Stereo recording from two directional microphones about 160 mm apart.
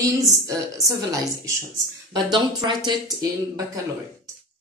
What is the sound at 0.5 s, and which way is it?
Speech, 20° right (ahead or behind).